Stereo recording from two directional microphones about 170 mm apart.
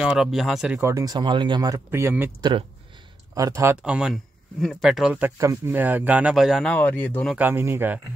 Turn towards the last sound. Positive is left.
turn(degrees=-15)  # may be behind; listen again after turning